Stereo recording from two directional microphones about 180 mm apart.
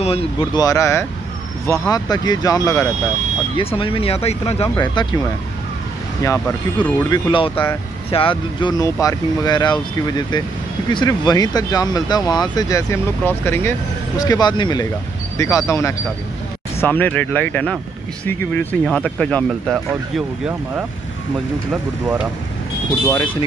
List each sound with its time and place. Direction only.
0.0 s speech: 35° left (ahead or behind)
0.6 s speech: 20° left (ahead or behind)
3.5 s speech: 30° left (ahead or behind)
4.7 s speech: 25° left (ahead or behind)
6.2 s speech: 10° left (ahead or behind)
7.1 s speech: 30° left (ahead or behind); by 19.8 s 5° left (ahead or behind)
19.9 s speech: 5° right (ahead or behind)